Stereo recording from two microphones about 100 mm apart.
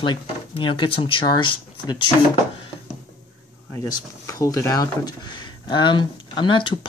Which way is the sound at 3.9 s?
35° left (ahead or behind).